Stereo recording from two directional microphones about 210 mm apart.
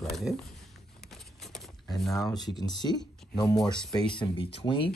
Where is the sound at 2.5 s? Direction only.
20° left (ahead or behind).